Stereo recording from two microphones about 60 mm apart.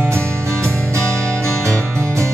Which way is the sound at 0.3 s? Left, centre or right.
Right.